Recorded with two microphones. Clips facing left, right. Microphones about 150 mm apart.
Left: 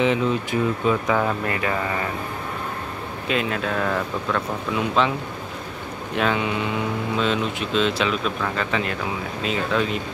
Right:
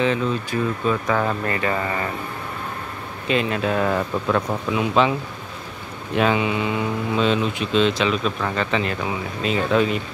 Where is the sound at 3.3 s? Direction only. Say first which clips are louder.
Right 3 dB; centre (ahead or behind).